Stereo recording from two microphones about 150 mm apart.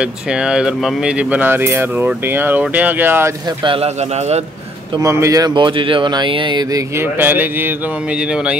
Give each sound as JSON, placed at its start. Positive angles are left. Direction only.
{"t": 0.0, "sound": "speech", "side_deg": -5}
{"t": 3.4, "sound": "a man's voice", "side_deg": -35}
{"t": 4.9, "sound": "speech", "side_deg": -20}